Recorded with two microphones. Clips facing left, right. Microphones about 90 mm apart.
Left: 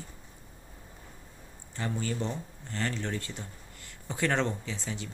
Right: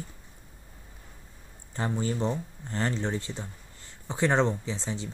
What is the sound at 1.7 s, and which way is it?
Speech, 30° right (ahead or behind).